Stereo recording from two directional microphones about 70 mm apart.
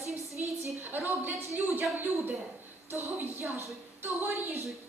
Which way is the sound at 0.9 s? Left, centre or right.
Right.